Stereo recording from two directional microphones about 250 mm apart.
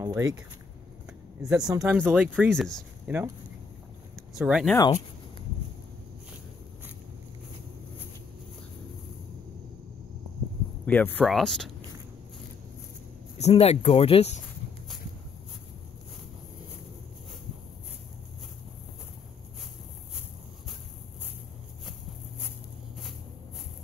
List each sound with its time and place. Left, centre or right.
0.0 s a sound: centre
1.4 s speech: centre
4.4 s speech: centre
10.9 s speech: centre
13.4 s speech: left